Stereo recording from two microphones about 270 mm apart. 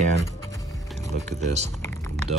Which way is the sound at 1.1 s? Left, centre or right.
Right.